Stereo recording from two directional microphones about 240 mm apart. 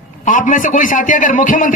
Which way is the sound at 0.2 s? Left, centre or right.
Left.